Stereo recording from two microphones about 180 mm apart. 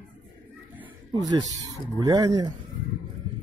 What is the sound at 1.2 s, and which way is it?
Speech, 20° right (ahead or behind).